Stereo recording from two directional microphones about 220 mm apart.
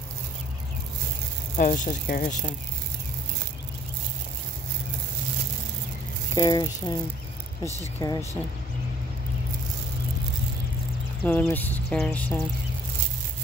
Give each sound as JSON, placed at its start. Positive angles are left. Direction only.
{"t": 1.6, "sound": "speech", "side_deg": 35}
{"t": 6.3, "sound": "speech", "side_deg": 20}
{"t": 8.0, "sound": "speech", "side_deg": 15}
{"t": 11.2, "sound": "speech", "side_deg": 10}